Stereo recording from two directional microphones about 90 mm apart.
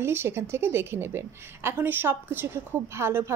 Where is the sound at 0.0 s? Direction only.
25° right (ahead or behind).